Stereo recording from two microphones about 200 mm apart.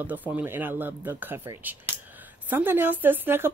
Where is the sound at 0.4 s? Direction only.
10° right (ahead or behind).